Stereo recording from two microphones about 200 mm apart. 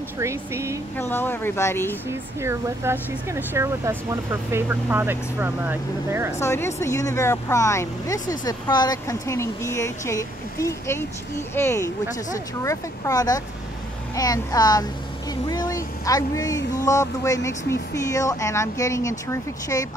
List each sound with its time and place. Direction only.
0.2 s speech: 15° right (ahead or behind)
0.9 s speech: 10° left (ahead or behind)
2.0 s speech: 10° right (ahead or behind)
6.4 s speech: 15° left (ahead or behind)